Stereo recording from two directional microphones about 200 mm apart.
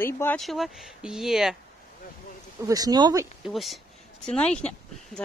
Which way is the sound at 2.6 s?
20° right (ahead or behind).